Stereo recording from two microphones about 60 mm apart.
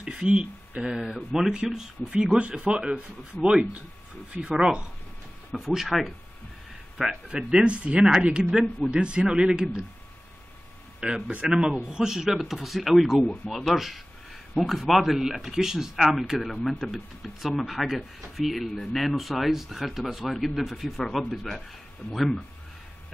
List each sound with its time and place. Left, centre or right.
0.0 s a sound: centre
0.8 s speech: centre
5.5 s speech: centre
7.2 s speech: centre
11.0 s speech: centre